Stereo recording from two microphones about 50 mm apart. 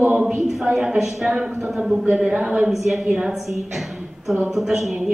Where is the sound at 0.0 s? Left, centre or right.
Right.